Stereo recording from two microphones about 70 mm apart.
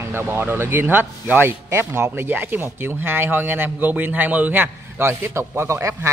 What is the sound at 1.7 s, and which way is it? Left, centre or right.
Speech, right.